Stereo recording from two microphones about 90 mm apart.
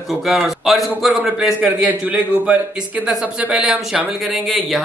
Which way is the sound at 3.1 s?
10° right (ahead or behind).